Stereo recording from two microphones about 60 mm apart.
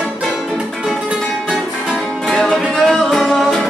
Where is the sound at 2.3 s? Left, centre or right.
Centre.